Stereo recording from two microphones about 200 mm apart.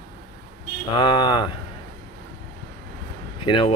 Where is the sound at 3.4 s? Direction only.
25° left (ahead or behind).